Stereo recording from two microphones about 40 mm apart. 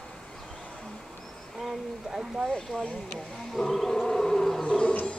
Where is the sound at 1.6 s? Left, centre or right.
Centre.